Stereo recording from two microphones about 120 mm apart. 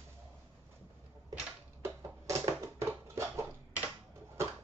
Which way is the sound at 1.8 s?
25° right (ahead or behind).